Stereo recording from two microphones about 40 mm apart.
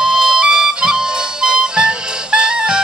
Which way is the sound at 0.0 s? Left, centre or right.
Centre.